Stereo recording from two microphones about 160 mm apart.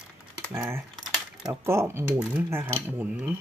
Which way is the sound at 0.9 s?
Centre (ahead or behind).